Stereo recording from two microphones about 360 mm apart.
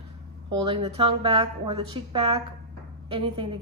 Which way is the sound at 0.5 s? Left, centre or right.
Centre.